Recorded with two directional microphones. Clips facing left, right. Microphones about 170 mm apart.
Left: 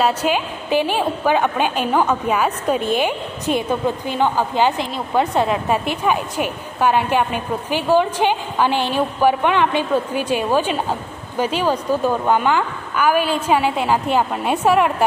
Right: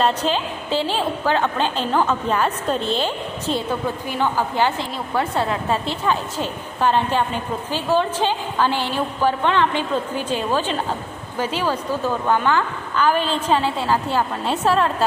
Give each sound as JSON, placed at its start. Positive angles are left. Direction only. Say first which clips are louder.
{"t": 0.0, "sound": "a woman's voice", "louder": "left 2 dB", "side_deg": 10}